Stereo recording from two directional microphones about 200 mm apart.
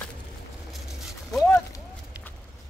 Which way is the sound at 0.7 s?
Centre (ahead or behind).